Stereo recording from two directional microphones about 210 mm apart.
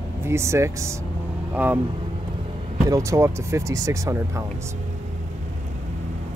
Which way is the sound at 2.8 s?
15° right (ahead or behind).